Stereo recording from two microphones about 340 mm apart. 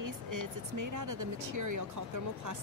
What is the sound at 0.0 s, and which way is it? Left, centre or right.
Speech, right.